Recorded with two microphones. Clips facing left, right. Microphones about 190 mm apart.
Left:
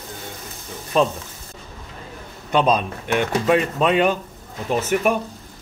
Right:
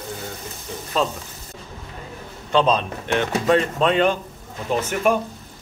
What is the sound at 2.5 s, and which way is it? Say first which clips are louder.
Speech: even; 10° left (ahead or behind).